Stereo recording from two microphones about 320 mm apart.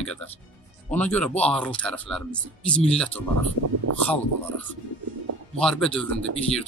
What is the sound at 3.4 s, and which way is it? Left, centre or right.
Speech, right.